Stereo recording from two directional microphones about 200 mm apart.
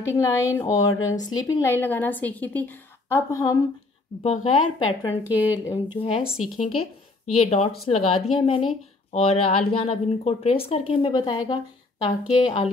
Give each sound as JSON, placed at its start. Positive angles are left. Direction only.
{"t": 0.0, "sound": "a woman's voice", "side_deg": 15}
{"t": 4.2, "sound": "speech", "side_deg": 35}
{"t": 5.3, "sound": "speech", "side_deg": -10}
{"t": 5.7, "sound": "speech", "side_deg": 25}
{"t": 6.2, "sound": "speech", "side_deg": 0}
{"t": 7.3, "sound": "speech", "side_deg": 30}